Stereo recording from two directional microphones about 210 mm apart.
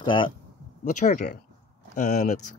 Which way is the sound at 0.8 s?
40° left (ahead or behind).